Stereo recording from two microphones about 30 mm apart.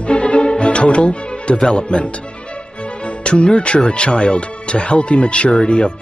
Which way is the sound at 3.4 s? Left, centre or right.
Left.